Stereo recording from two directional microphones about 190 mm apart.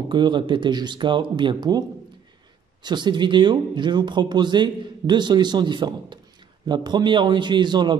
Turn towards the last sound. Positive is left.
turn(degrees=-25)  # may be behind; listen again after turning